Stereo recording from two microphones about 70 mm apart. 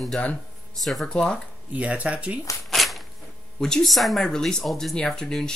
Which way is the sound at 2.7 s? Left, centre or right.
Centre.